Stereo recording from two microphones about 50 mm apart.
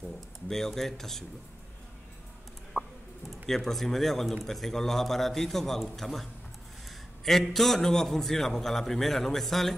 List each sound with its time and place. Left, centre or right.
0.5 s speech: centre
2.8 s a sound: left
3.3 s a man's voice: centre
7.2 s a man's voice: centre